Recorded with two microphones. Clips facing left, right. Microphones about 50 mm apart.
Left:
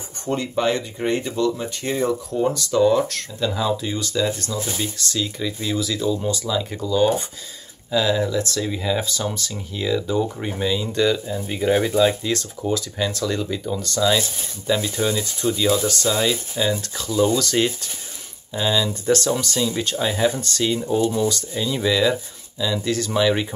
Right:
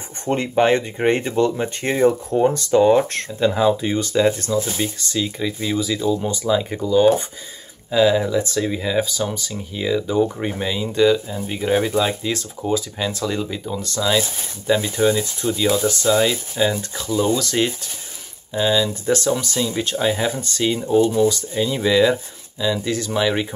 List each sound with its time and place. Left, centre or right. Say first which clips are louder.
0.2 s speech: right 4 dB; right
4.7 s speech: right 2 dB; centre